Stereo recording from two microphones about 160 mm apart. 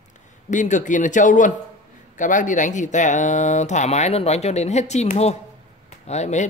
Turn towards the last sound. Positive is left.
turn(degrees=45)  # may be behind; listen again after turning